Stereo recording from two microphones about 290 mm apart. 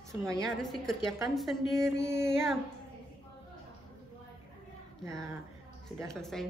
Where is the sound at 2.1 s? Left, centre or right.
Left.